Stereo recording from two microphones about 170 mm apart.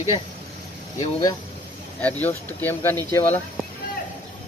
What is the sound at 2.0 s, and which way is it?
Speech, 10° left (ahead or behind).